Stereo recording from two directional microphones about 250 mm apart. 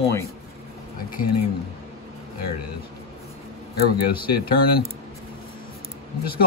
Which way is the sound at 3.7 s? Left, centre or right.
Left.